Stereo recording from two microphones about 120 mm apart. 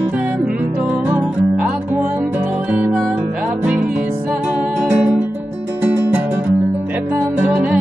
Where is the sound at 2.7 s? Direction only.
10° right (ahead or behind).